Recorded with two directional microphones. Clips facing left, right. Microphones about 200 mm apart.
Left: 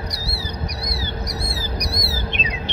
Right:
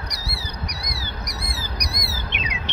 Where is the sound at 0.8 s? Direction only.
30° left (ahead or behind).